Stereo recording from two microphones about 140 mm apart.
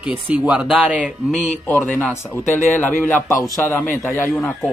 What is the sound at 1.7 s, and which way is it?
A man's voice, 10° left (ahead or behind).